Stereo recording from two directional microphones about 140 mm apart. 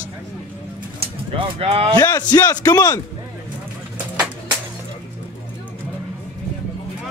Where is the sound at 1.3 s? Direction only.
45° right (ahead or behind).